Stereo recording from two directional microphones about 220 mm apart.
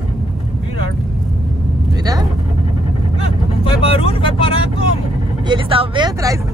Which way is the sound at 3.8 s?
25° left (ahead or behind).